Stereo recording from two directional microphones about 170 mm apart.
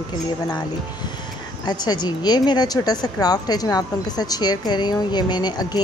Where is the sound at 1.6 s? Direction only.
25° left (ahead or behind).